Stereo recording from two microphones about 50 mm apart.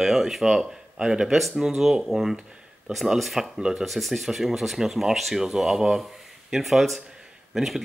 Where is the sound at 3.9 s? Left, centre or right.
Centre.